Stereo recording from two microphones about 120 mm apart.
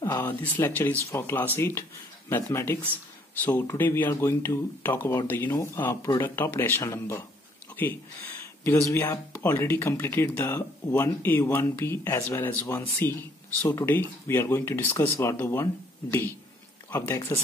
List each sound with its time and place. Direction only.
0.0 s speech: 20° left (ahead or behind)
8.6 s speech: 20° left (ahead or behind)